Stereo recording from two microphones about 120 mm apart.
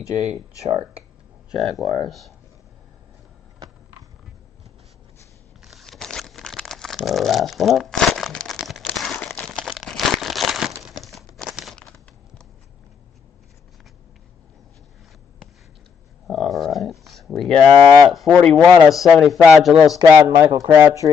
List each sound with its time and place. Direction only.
0.1 s speech: 60° right (ahead or behind)
1.6 s speech: centre (ahead or behind)
5.6 s crumpling: centre (ahead or behind)
9.1 s a sound: 10° left (ahead or behind)
9.5 s crumpling: centre (ahead or behind)
10.8 s a sound: centre (ahead or behind)
16.3 s a sound: 5° left (ahead or behind)
18.9 s speech: centre (ahead or behind)
20.1 s speech: 20° right (ahead or behind)